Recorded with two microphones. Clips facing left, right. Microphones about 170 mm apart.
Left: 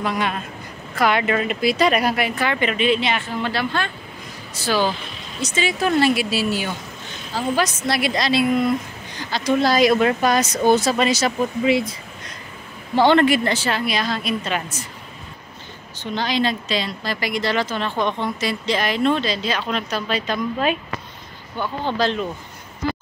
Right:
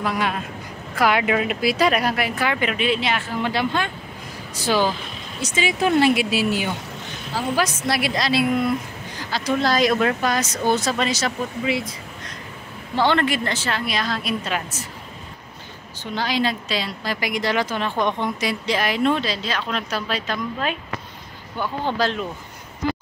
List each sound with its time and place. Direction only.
0.0 s speech: 5° right (ahead or behind)
3.5 s a woman's voice: 15° right (ahead or behind); by 10.1 s 5° left (ahead or behind)
10.2 s speech: 15° left (ahead or behind)
12.9 s speech: 15° left (ahead or behind); by 14.9 s 5° right (ahead or behind)
16.0 s a woman's voice: 5° right (ahead or behind)
21.5 s a woman's voice: 10° right (ahead or behind)